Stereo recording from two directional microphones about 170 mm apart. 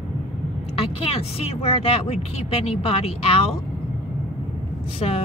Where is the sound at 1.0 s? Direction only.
35° left (ahead or behind).